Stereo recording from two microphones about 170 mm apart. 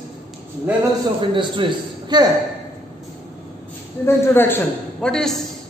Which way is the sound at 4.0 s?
15° left (ahead or behind).